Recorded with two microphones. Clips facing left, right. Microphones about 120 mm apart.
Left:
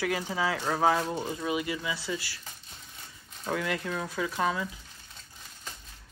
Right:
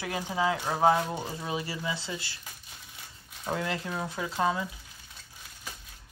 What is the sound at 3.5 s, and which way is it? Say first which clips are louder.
Speech: left 1 dB; 25° right (ahead or behind).